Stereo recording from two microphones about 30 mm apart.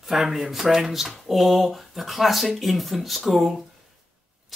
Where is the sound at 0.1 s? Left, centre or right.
Centre.